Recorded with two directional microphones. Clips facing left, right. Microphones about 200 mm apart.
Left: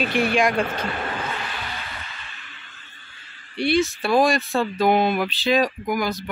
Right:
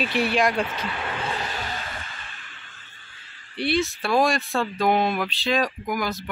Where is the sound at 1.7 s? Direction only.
45° right (ahead or behind).